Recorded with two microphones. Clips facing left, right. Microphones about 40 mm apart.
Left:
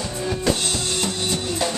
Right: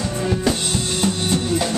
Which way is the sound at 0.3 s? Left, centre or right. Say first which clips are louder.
Right 1 dB; centre.